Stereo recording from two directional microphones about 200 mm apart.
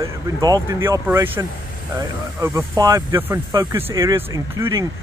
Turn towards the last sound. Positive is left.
turn(degrees=-20)  # may be behind; listen again after turning